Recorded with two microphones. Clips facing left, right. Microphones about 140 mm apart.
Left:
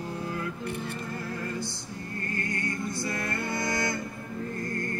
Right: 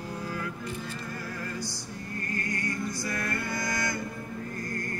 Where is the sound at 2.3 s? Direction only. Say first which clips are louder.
Even; 25° left (ahead or behind).